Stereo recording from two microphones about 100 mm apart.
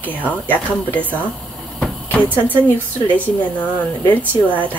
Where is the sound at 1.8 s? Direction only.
10° left (ahead or behind).